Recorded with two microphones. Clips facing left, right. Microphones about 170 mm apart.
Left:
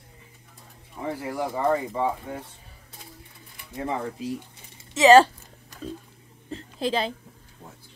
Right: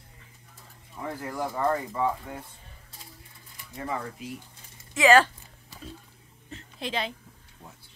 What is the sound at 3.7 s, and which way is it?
Speech, 25° left (ahead or behind).